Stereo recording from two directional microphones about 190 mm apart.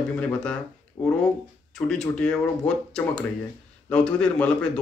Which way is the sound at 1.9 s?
5° left (ahead or behind).